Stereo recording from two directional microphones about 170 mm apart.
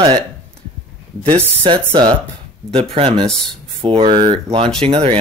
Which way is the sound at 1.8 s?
20° right (ahead or behind).